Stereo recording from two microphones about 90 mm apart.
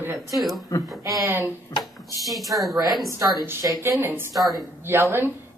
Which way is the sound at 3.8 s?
25° right (ahead or behind).